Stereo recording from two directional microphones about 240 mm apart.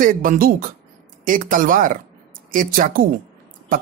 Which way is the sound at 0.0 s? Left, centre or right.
Right.